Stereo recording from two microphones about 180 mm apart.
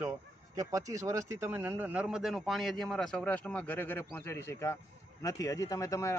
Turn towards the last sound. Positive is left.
turn(degrees=15)  # may be behind; listen again after turning